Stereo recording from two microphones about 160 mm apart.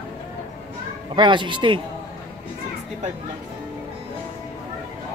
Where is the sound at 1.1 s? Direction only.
30° right (ahead or behind).